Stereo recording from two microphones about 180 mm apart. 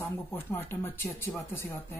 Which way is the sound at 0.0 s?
10° left (ahead or behind).